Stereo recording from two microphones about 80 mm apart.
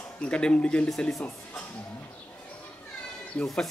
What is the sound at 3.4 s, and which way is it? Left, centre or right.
Speech, centre.